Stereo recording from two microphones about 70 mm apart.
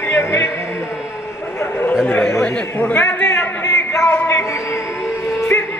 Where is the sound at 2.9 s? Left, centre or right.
Left.